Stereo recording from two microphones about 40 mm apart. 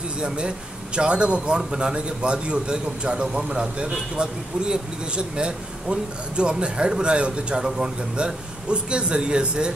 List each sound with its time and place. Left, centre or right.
0.9 s speech: right